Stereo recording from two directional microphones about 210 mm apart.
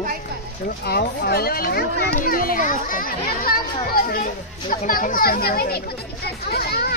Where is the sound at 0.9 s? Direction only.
50° left (ahead or behind).